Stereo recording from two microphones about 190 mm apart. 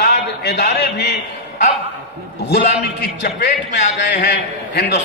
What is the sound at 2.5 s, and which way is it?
A man's voice, 60° left (ahead or behind).